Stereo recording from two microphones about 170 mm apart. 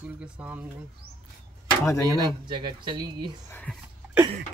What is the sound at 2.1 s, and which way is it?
Speech, 25° right (ahead or behind).